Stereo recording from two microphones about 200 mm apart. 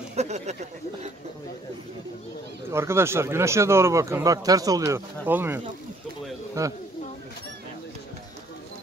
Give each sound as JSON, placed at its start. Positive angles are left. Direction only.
{"t": 0.1, "sound": "speech", "side_deg": -35}
{"t": 2.7, "sound": "speech", "side_deg": -15}